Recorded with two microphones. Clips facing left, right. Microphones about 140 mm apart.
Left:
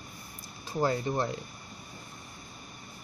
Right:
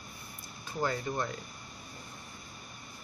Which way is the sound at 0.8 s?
30° left (ahead or behind).